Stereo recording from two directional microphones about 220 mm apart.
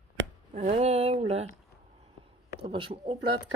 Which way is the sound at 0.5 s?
25° right (ahead or behind).